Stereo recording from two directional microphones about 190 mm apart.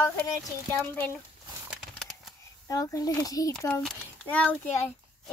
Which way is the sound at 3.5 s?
5° left (ahead or behind).